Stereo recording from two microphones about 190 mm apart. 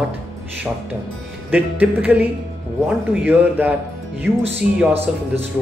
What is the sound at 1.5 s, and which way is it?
A man's voice, 10° right (ahead or behind).